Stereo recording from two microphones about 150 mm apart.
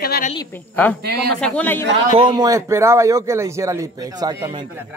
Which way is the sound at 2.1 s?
30° right (ahead or behind).